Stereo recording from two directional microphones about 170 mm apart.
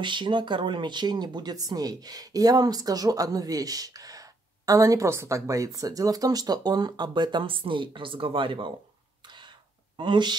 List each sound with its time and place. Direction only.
0.0 s speech: 30° right (ahead or behind)
9.9 s speech: 25° right (ahead or behind)